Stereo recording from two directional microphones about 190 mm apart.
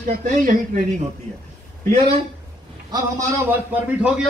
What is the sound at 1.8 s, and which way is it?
Speech, 35° right (ahead or behind).